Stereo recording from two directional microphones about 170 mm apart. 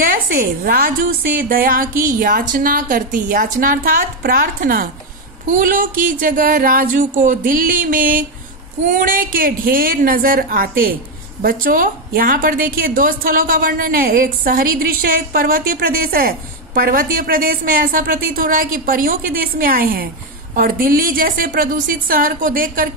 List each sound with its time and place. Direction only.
0.0 s a woman's voice: 55° right (ahead or behind)